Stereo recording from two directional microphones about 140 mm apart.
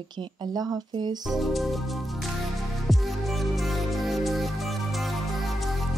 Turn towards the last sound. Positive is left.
turn(degrees=0)  # may be behind; listen again after turning